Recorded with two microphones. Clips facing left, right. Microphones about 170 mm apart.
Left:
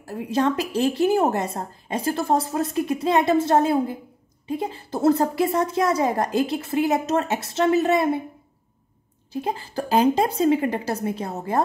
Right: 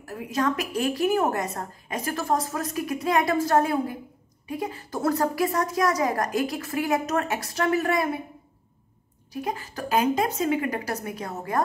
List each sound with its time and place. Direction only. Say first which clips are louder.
0.0 s a woman's voice: left 4 dB; 30° left (ahead or behind)
9.3 s a woman's voice: left 3 dB; 30° left (ahead or behind)